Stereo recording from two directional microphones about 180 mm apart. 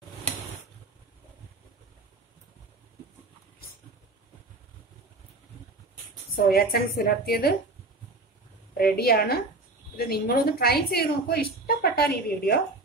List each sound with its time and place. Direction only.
6.3 s a woman's voice: 55° left (ahead or behind)
8.9 s a woman's voice: 60° left (ahead or behind)